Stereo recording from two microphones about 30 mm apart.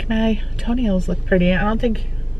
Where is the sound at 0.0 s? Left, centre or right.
Centre.